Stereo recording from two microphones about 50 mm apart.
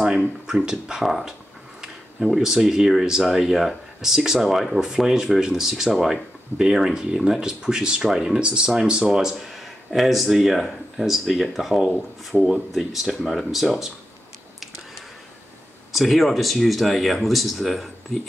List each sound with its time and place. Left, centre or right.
0.5 s speech: centre
1.0 s speech: centre
2.3 s speech: centre
15.9 s speech: centre